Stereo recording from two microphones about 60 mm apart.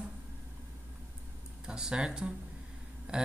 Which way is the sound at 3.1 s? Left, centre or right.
Centre.